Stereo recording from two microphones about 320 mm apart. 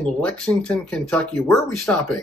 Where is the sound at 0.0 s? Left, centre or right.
Centre.